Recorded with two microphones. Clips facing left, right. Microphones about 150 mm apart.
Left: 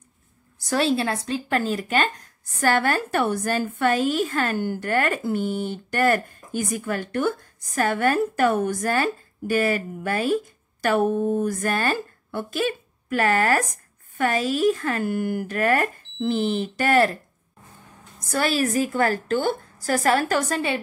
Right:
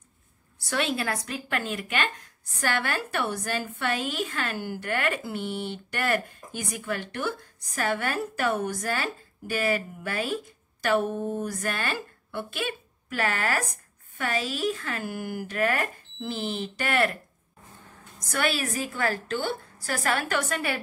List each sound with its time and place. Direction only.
0.6 s a woman's voice: 40° left (ahead or behind)
18.2 s a woman's voice: 35° left (ahead or behind)